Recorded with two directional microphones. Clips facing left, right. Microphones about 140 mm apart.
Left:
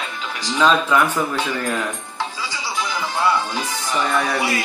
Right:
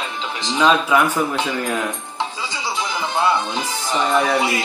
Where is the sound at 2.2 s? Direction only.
20° right (ahead or behind).